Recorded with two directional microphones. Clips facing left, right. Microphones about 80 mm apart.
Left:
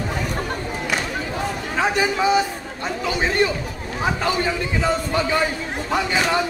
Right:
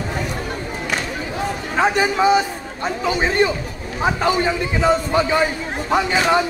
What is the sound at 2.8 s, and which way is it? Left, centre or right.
A man's voice, right.